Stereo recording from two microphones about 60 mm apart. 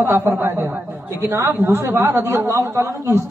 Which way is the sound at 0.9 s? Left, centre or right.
Right.